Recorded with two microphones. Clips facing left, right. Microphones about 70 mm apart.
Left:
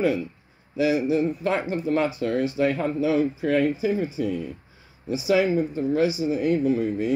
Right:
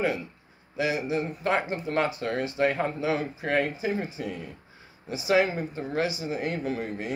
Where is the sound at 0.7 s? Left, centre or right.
Right.